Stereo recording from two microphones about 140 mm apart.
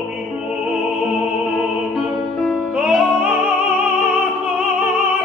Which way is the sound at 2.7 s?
5° right (ahead or behind).